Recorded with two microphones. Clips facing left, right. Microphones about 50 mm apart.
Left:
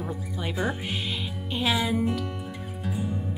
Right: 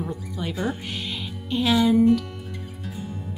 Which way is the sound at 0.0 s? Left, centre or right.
Centre.